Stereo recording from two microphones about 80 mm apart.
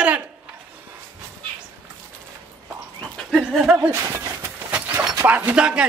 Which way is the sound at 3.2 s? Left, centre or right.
Centre.